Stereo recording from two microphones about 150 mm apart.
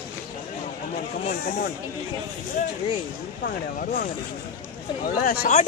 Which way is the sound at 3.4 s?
90° left.